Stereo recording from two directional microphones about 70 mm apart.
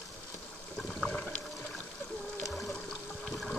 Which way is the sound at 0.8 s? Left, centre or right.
Centre.